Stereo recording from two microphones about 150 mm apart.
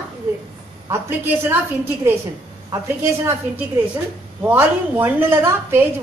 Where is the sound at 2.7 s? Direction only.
15° right (ahead or behind).